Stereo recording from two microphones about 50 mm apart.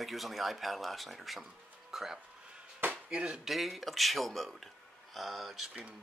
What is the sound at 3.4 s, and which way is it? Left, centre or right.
Speech, centre.